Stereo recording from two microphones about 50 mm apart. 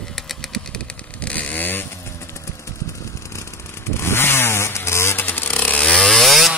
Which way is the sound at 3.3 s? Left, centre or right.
Left.